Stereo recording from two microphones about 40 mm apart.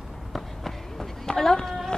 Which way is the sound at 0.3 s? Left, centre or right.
Centre.